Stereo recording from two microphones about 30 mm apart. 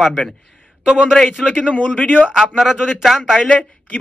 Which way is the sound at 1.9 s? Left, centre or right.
Left.